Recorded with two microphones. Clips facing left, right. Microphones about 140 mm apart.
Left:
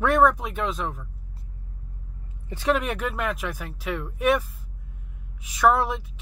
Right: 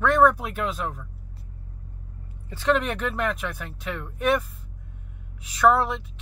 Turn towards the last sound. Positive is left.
turn(degrees=0)  # may be behind; listen again after turning